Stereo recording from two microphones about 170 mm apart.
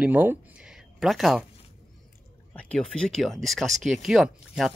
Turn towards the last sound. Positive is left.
turn(degrees=-5)  # may be behind; listen again after turning